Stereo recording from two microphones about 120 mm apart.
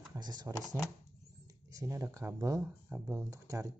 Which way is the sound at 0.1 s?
35° right (ahead or behind).